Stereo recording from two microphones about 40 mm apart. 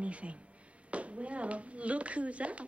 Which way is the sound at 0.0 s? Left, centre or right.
Right.